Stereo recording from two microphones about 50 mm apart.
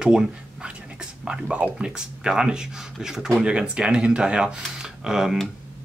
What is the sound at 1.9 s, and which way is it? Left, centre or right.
Speech, centre.